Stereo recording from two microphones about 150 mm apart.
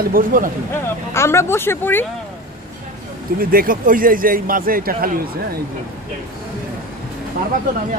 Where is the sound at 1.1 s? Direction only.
15° left (ahead or behind).